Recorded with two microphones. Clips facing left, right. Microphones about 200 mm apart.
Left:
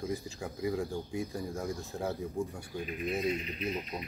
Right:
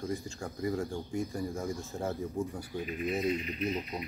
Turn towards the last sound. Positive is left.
turn(degrees=0)  # may be behind; listen again after turning